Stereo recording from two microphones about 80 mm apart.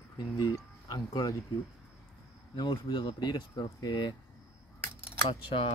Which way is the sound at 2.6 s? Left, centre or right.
Left.